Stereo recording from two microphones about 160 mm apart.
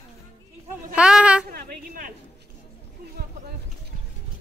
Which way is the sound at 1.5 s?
70° right (ahead or behind).